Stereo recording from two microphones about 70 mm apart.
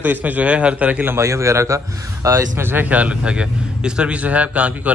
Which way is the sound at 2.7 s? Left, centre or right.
Right.